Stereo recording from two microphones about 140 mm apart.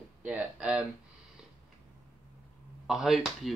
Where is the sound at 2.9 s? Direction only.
5° right (ahead or behind).